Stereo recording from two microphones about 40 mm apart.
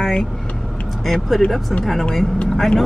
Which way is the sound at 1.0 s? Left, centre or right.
Centre.